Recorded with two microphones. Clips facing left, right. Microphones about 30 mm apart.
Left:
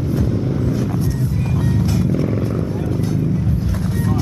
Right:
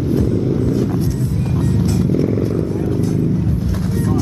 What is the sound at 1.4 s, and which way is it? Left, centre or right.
Music, centre.